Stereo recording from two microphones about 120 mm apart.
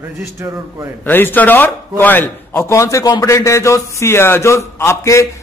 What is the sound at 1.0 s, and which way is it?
A man's voice, 15° left (ahead or behind).